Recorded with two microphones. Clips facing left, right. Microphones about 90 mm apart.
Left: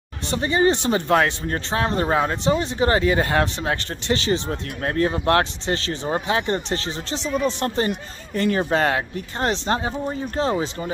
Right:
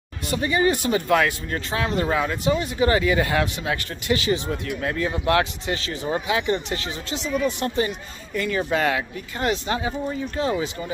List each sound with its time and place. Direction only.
0.3 s speech: 30° left (ahead or behind)
7.6 s speech: 40° left (ahead or behind)